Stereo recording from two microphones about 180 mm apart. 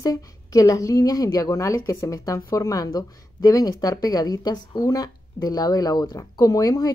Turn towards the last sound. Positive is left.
turn(degrees=20)  # may be behind; listen again after turning